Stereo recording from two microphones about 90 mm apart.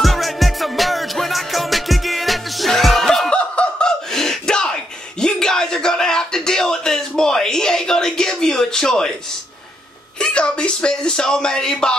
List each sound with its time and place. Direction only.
0.0 s music: centre (ahead or behind)
5.2 s a sound: 5° left (ahead or behind)
10.1 s speech: 10° left (ahead or behind)